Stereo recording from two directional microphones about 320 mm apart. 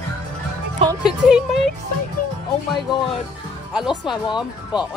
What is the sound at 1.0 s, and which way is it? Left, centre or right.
Speech, centre.